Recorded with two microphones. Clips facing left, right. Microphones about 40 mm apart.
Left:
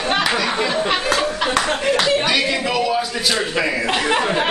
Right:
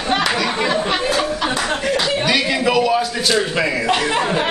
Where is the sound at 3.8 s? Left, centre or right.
Centre.